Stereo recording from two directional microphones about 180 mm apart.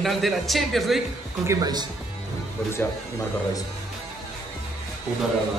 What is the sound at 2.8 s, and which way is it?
Speech, 10° left (ahead or behind).